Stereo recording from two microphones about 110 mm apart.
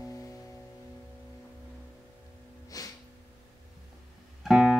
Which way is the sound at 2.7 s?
35° left (ahead or behind).